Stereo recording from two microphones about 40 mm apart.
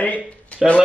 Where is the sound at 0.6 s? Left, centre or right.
Centre.